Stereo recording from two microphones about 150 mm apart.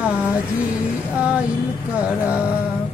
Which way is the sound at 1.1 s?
5° right (ahead or behind).